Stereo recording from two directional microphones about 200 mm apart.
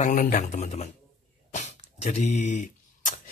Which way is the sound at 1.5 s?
35° left (ahead or behind).